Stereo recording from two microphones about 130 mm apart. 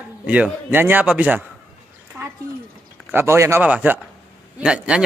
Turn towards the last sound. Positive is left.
turn(degrees=-5)  # may be behind; listen again after turning